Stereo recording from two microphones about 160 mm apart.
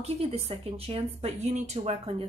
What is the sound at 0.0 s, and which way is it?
A woman's voice, 40° right (ahead or behind).